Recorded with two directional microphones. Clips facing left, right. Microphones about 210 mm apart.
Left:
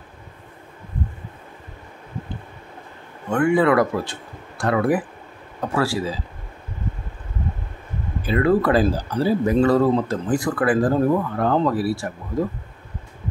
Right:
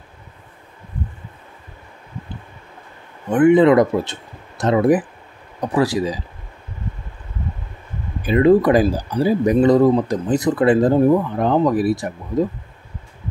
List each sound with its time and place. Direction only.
3.3 s speech: 20° right (ahead or behind)
8.2 s speech: 20° right (ahead or behind)